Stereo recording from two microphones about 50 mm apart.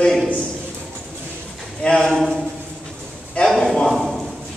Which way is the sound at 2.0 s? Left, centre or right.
Centre.